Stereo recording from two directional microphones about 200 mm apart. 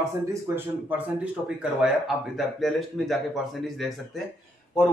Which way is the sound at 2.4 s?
Centre (ahead or behind).